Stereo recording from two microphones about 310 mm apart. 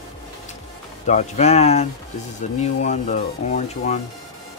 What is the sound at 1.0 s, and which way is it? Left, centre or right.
Speech, left.